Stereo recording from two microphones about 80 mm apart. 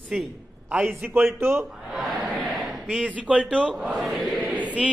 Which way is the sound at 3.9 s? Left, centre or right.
Centre.